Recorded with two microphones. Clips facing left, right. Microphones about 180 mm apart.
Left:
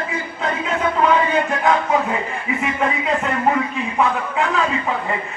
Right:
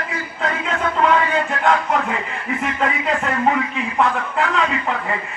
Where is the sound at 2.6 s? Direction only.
5° left (ahead or behind).